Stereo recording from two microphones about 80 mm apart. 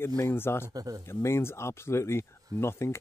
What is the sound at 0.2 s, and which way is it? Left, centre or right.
Speech, left.